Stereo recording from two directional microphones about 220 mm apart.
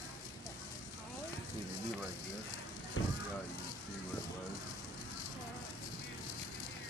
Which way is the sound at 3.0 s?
60° left (ahead or behind).